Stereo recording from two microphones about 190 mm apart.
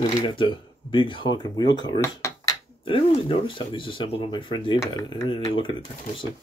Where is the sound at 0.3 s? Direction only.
25° left (ahead or behind).